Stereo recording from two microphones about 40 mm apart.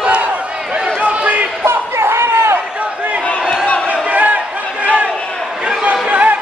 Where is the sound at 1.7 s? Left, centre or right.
Right.